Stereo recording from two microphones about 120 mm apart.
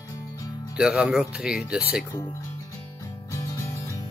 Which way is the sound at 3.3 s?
25° left (ahead or behind).